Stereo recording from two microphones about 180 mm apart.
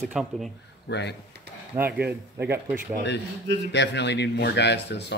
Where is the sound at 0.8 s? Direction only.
70° left (ahead or behind).